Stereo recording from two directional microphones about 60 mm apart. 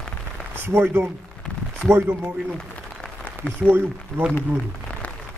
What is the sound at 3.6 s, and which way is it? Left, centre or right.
Speech, centre.